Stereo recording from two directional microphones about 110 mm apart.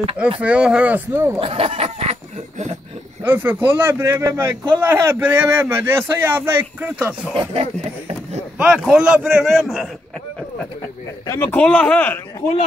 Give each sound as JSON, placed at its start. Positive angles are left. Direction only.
{"t": 0.4, "sound": "speech", "side_deg": -10}
{"t": 1.4, "sound": "speech", "side_deg": -65}
{"t": 3.3, "sound": "a man's voice", "side_deg": -20}
{"t": 7.3, "sound": "speech", "side_deg": -60}
{"t": 8.7, "sound": "speech", "side_deg": -5}
{"t": 9.5, "sound": "a man's voice", "side_deg": 0}
{"t": 11.2, "sound": "speech", "side_deg": 20}
{"t": 11.6, "sound": "speech", "side_deg": 10}